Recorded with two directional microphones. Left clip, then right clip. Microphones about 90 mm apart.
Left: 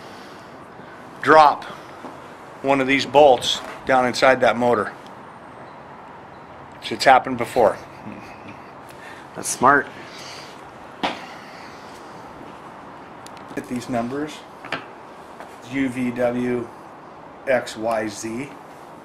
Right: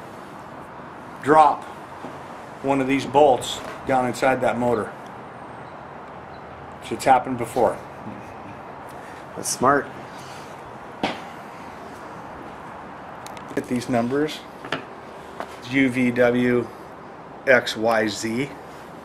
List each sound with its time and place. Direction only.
1.2 s speech: 25° left (ahead or behind)
2.6 s speech: 25° left (ahead or behind)
6.9 s speech: 30° left (ahead or behind)
9.6 s speech: 25° left (ahead or behind)
13.6 s speech: centre (ahead or behind)